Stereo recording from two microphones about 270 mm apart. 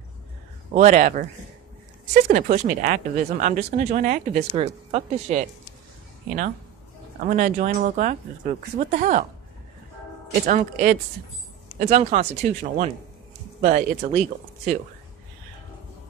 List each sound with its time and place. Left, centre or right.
0.7 s speech: right
2.2 s speech: right
7.2 s speech: right
10.4 s speech: right